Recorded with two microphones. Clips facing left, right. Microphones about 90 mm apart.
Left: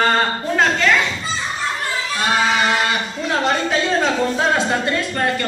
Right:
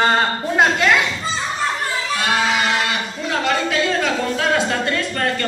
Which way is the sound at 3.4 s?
30° left (ahead or behind).